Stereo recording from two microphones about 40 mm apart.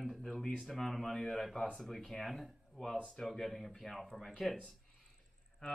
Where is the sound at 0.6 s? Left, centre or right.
Centre.